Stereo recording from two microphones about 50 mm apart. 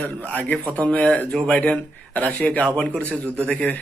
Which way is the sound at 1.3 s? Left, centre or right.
Centre.